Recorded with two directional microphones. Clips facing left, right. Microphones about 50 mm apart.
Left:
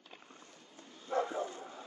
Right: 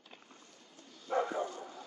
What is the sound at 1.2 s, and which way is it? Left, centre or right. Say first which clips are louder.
Bow-wow: right 2 dB; right.